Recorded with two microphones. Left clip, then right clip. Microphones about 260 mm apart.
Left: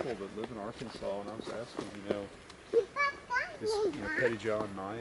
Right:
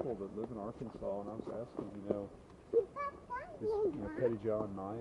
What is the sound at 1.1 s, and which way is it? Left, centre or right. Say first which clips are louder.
Speech: left 2 dB; right.